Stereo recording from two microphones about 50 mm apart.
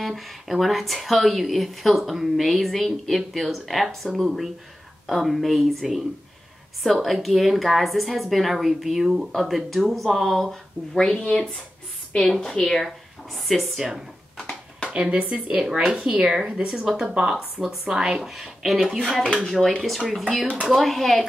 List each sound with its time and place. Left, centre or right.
0.0 s speech: centre
11.0 s a woman's voice: centre
13.7 s a woman's voice: centre
14.3 s a sound: centre
14.9 s speech: right
15.6 s a woman's voice: centre
16.0 s speech: right
16.3 s a woman's voice: centre
18.2 s speech: centre
19.2 s a woman's voice: centre
20.1 s speech: centre